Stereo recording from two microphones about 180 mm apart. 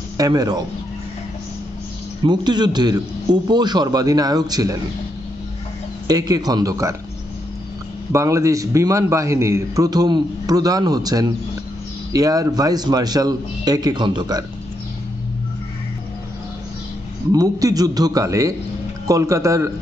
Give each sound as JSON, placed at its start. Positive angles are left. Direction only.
{"t": 0.2, "sound": "a man's voice", "side_deg": -20}
{"t": 2.2, "sound": "a man's voice", "side_deg": -25}
{"t": 6.0, "sound": "a man's voice", "side_deg": -20}
{"t": 8.1, "sound": "a man's voice", "side_deg": -15}
{"t": 17.3, "sound": "a man's voice", "side_deg": -20}